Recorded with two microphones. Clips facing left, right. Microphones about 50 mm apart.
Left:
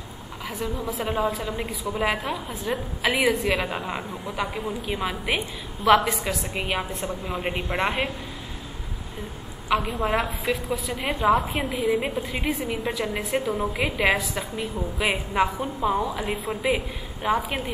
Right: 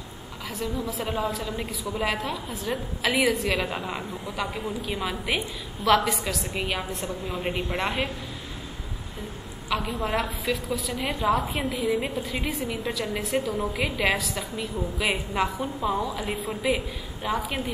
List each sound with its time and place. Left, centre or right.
0.9 s a woman's voice: centre
1.2 s a woman's voice: left
5.9 s a woman's voice: left
9.8 s a woman's voice: centre
10.0 s a woman's voice: left
12.2 s a woman's voice: left
13.5 s a woman's voice: centre
15.8 s a woman's voice: left
16.1 s a woman's voice: centre